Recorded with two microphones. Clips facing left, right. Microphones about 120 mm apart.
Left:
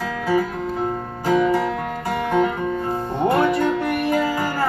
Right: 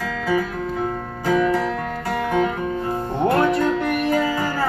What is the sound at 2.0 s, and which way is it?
Music, 15° left (ahead or behind).